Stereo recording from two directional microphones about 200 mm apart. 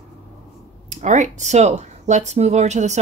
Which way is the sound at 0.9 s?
35° right (ahead or behind).